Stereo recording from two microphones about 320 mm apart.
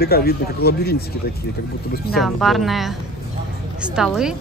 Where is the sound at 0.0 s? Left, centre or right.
Left.